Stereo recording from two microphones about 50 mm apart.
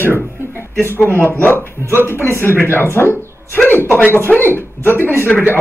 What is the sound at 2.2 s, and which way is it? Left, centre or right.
Speech, left.